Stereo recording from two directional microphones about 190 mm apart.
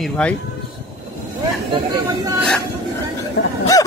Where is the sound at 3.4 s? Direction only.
55° left (ahead or behind).